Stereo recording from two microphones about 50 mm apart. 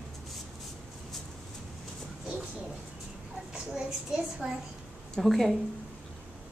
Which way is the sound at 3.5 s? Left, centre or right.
Centre.